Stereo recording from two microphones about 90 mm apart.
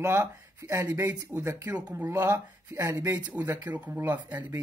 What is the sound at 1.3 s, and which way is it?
Speech, 20° right (ahead or behind).